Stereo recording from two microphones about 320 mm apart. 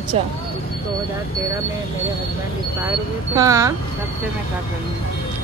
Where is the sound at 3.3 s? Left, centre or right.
Centre.